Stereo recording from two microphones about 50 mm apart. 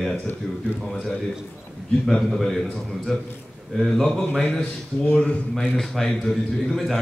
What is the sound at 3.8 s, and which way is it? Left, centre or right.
Speech, centre.